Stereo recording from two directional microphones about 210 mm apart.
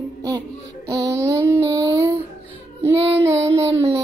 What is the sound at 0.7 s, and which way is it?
Music, 15° right (ahead or behind).